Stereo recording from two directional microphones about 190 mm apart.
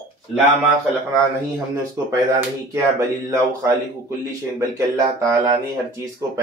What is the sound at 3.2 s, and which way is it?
A man's voice, 15° right (ahead or behind).